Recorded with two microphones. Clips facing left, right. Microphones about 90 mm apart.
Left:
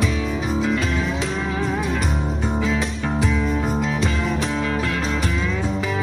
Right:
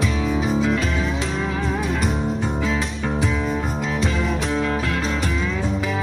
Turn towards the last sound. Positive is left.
turn(degrees=0)  # may be behind; listen again after turning